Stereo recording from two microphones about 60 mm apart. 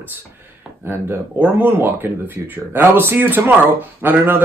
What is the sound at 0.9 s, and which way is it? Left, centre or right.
Speech, right.